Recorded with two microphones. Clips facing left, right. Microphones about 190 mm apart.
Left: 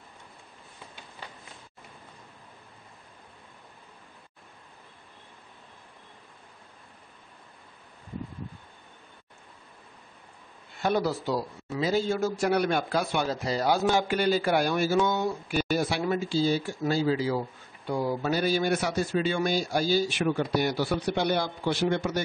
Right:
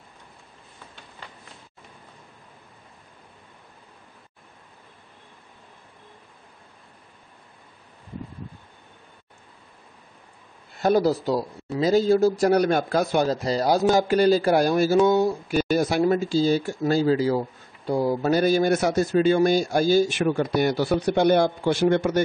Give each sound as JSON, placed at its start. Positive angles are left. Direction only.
{"t": 10.8, "sound": "a man's voice", "side_deg": -40}